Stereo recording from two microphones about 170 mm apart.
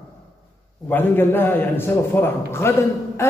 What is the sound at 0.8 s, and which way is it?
A man's voice, 10° left (ahead or behind).